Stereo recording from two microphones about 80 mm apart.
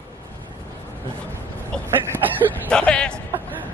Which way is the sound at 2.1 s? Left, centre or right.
Right.